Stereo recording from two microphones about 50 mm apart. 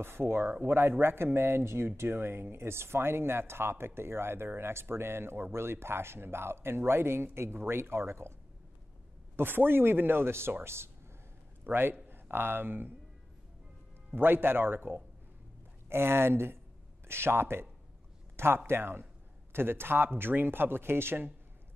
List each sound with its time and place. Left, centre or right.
0.0 s speech: right
9.4 s speech: right
11.6 s a man's voice: right
14.1 s speech: right
15.9 s speech: right
18.3 s a sound: right
18.7 s speech: right